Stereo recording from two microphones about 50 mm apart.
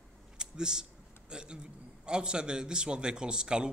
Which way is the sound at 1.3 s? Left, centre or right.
Centre.